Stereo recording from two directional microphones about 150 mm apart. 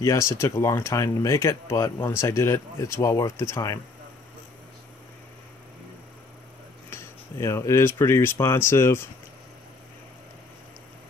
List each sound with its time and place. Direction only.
0.0 s speech: 20° left (ahead or behind)
6.9 s speech: 15° left (ahead or behind)